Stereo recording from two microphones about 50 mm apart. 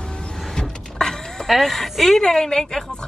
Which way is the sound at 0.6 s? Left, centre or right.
Centre.